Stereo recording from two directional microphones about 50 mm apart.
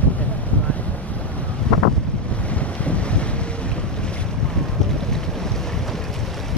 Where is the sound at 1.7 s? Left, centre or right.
Centre.